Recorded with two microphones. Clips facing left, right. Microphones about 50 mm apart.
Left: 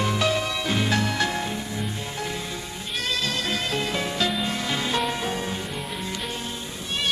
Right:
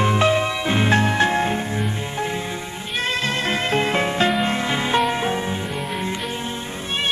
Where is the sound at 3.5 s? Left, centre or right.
Right.